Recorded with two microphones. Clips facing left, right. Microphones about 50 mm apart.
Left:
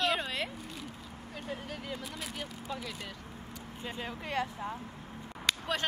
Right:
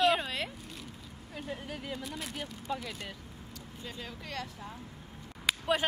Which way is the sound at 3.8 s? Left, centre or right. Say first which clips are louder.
Left 4 dB; left.